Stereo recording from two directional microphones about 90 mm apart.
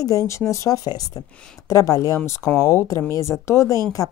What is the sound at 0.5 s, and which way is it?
Speech, 45° left (ahead or behind).